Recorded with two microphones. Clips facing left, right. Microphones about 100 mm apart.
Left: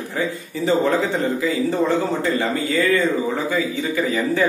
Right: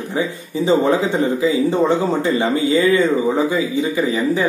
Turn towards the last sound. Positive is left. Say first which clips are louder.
# right 2 dB
turn(degrees=-20)  # may be behind; listen again after turning